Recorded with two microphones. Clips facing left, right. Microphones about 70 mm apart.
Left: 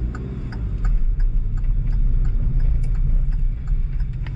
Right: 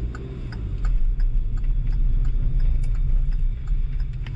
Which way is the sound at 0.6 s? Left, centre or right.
Centre.